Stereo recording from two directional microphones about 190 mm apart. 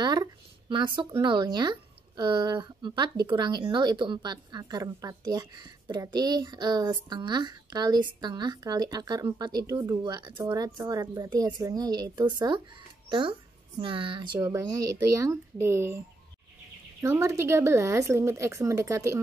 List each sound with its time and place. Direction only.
0.0 s speech: 20° right (ahead or behind)
17.0 s speech: 15° right (ahead or behind)